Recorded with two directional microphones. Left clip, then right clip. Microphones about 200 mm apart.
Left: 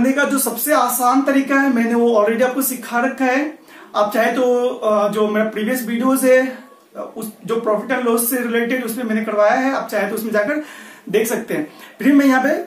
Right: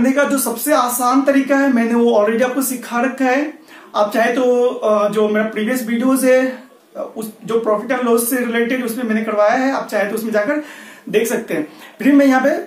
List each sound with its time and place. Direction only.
0.0 s speech: centre (ahead or behind)